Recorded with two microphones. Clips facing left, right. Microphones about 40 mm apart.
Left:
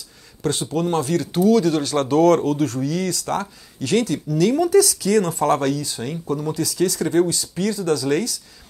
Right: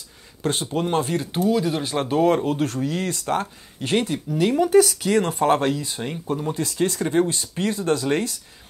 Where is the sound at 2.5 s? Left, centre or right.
Right.